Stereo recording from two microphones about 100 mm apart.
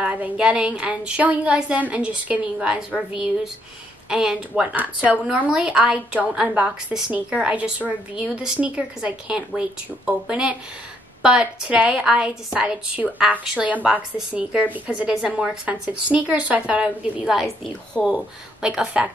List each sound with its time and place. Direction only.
0.0 s a woman's voice: 5° right (ahead or behind)
4.7 s a woman's voice: 15° right (ahead or behind)